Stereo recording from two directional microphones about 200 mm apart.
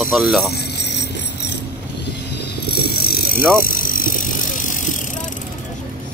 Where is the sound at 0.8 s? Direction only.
60° left (ahead or behind).